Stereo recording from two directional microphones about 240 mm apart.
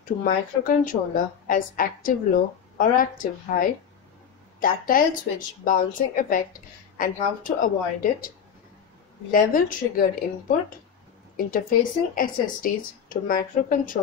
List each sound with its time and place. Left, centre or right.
0.0 s speech: left
9.3 s speech: left
11.3 s speech: left